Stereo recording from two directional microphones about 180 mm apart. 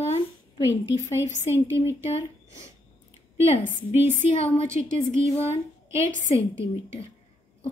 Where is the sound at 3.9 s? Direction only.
10° right (ahead or behind).